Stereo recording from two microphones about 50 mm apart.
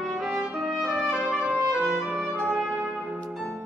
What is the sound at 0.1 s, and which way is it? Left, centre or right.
Trumpet, centre.